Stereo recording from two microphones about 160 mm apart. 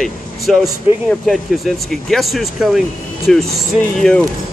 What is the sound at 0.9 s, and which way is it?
Speech, 35° left (ahead or behind).